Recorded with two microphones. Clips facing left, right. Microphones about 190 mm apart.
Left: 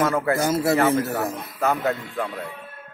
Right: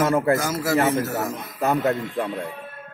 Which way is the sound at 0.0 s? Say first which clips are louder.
Right 2 dB; 25° right (ahead or behind).